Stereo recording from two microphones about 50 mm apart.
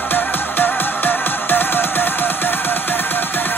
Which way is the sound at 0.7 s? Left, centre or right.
Left.